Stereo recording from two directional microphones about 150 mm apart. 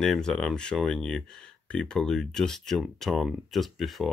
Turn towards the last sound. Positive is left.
turn(degrees=0)  # may be behind; listen again after turning